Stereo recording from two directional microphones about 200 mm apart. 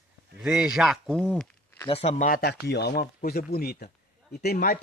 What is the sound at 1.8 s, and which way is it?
Speech, 30° left (ahead or behind).